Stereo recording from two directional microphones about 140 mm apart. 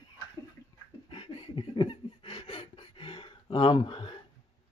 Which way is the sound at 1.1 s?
40° left (ahead or behind).